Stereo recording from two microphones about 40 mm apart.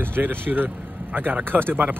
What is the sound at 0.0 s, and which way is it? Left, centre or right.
Speech, right.